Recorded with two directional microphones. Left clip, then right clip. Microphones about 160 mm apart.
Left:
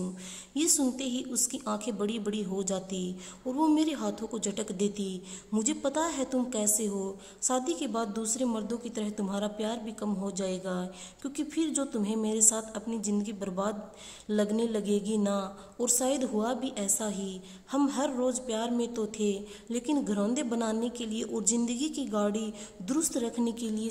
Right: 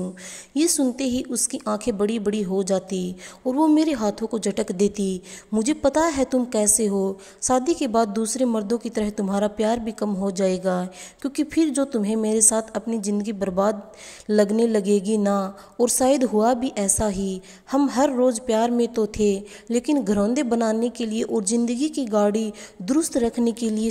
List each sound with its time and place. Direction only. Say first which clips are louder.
0.6 s a woman's voice: right 8 dB; 30° right (ahead or behind)